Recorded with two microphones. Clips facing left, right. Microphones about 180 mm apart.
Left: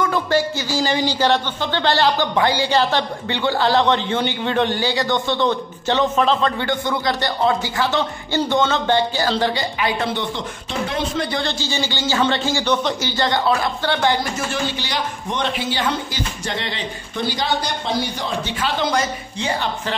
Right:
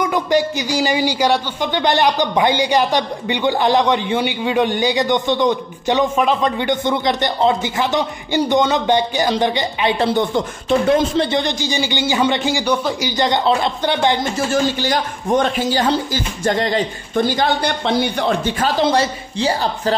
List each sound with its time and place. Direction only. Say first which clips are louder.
0.0 s a man's voice: right 2 dB; 15° right (ahead or behind)
11.3 s a man's voice: right 4 dB; 15° right (ahead or behind)
14.5 s a man's voice: right 7 dB; 50° right (ahead or behind)
18.8 s speech: right 4 dB; 30° right (ahead or behind)